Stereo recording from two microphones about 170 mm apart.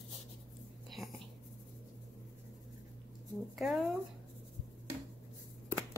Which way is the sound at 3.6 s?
Centre (ahead or behind).